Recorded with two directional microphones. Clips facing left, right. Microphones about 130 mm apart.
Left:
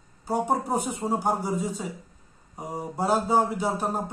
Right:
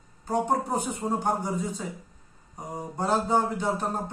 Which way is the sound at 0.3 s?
10° left (ahead or behind).